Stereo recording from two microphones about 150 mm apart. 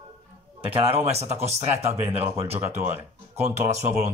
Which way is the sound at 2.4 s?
45° right (ahead or behind).